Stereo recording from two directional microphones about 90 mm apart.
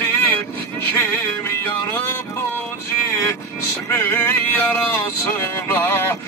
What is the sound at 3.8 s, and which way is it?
Music, 30° left (ahead or behind).